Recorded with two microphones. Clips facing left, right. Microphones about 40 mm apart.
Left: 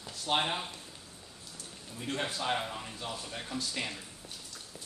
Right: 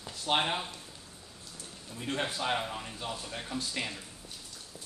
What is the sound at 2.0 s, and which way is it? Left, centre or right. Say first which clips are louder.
Speech: right 1 dB; right.